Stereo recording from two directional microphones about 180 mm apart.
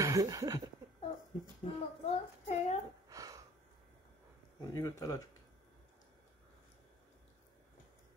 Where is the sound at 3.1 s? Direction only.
20° right (ahead or behind).